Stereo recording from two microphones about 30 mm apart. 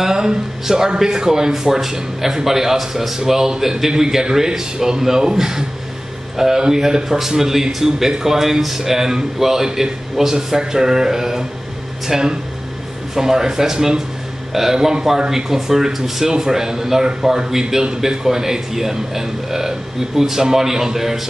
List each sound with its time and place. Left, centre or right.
0.0 s speech: right